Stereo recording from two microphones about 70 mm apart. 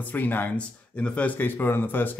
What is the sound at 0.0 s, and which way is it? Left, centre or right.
Speech, left.